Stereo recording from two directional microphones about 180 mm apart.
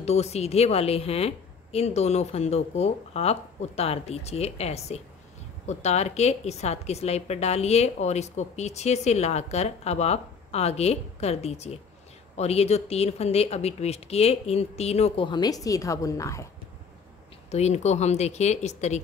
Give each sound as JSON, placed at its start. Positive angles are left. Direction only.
{"t": 0.0, "sound": "a woman's voice", "side_deg": 35}
{"t": 17.5, "sound": "a woman's voice", "side_deg": 35}